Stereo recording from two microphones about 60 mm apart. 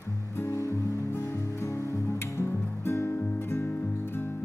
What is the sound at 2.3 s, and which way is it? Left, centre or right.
Music, left.